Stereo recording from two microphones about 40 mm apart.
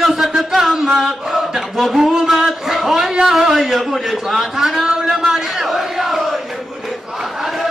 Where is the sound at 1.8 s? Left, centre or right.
Centre.